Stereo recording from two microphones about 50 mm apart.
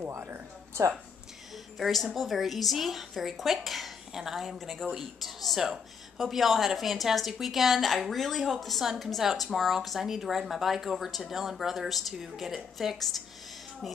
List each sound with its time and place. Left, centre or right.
0.3 s speech: right
1.8 s a woman's voice: centre
4.6 s a woman's voice: centre